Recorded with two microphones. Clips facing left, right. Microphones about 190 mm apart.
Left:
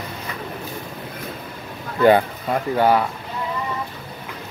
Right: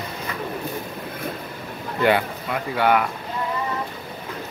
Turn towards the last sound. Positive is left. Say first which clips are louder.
# left 3 dB
turn(degrees=40)  # may be behind; listen again after turning